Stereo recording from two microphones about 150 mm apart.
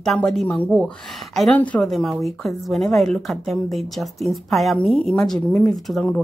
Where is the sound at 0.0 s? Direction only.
Centre (ahead or behind).